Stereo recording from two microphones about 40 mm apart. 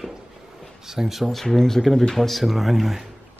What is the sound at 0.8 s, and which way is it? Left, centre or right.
Speech, centre.